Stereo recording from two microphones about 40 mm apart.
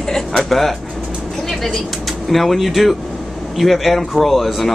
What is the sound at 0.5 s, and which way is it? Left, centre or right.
A man's voice, centre.